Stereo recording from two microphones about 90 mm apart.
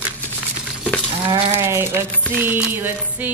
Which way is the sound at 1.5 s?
30° right (ahead or behind).